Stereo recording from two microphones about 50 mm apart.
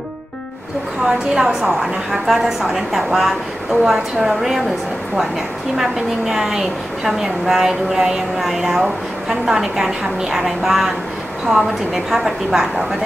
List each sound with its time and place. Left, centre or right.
1.0 s a woman's voice: centre
5.8 s a woman's voice: centre